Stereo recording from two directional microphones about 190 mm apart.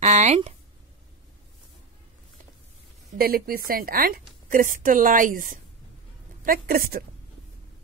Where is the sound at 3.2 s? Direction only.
50° right (ahead or behind).